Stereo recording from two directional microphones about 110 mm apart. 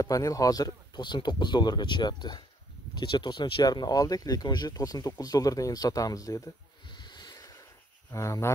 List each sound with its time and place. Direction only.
0.0 s speech: 30° left (ahead or behind)
6.9 s a sound: 40° left (ahead or behind)
8.1 s speech: 25° left (ahead or behind)